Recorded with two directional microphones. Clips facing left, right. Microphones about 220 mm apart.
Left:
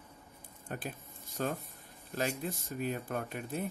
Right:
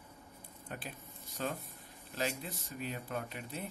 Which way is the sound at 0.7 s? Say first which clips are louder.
Left 5 dB; 45° left (ahead or behind).